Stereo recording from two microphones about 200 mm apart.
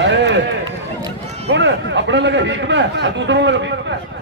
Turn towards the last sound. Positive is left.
turn(degrees=-65)  # may be behind; listen again after turning